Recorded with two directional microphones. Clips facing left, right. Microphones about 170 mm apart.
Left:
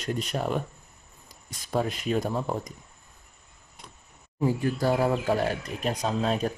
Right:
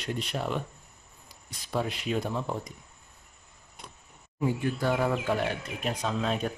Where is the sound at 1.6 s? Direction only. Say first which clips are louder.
Left 3 dB; 45° left (ahead or behind).